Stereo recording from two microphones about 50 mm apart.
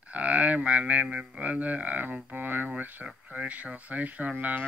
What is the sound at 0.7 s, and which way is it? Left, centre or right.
Speech, right.